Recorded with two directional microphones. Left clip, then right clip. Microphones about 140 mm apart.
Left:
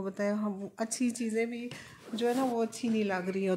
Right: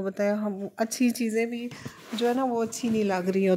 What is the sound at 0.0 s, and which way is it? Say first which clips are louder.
Speech: right 6 dB; 15° right (ahead or behind).